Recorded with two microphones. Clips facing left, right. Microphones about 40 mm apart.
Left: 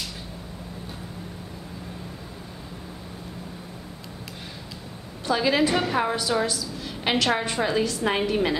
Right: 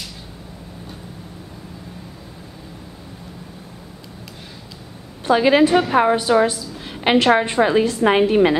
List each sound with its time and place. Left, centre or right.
5.2 s a woman's voice: right